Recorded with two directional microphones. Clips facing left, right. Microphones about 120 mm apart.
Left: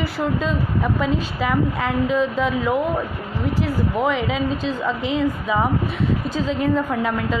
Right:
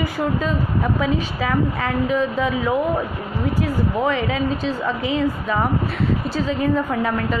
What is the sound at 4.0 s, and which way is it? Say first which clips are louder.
A woman's voice: even; centre (ahead or behind).